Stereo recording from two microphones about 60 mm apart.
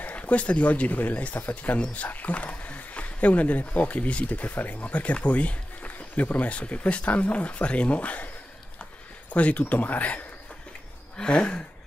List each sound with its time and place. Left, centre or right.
0.0 s speech: left
9.3 s speech: left
11.1 s a sound: centre